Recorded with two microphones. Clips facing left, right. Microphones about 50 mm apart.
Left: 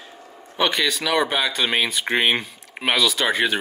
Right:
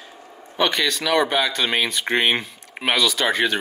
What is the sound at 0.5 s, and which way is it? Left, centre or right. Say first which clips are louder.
Speech: even; centre.